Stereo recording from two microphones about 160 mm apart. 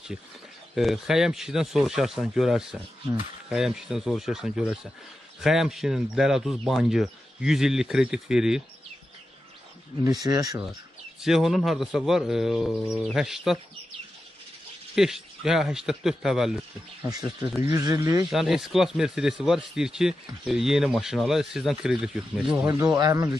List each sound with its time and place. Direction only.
0.7 s speech: centre (ahead or behind)
10.0 s speech: 20° right (ahead or behind)
11.2 s speech: centre (ahead or behind)
15.0 s speech: 5° right (ahead or behind)
17.1 s speech: 25° right (ahead or behind)
18.3 s speech: centre (ahead or behind)
22.6 s speech: 20° right (ahead or behind)